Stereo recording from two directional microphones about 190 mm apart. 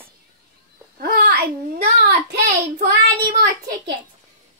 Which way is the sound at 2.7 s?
45° right (ahead or behind).